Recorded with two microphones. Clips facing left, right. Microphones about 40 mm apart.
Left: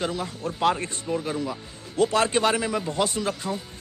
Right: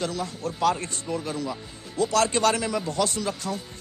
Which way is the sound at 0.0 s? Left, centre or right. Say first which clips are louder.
Left 1 dB; left.